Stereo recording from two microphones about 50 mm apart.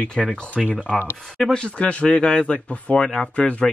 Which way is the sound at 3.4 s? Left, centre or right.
Left.